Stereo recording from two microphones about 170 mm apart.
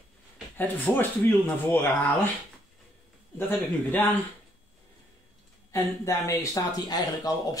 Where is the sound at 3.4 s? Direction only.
10° left (ahead or behind).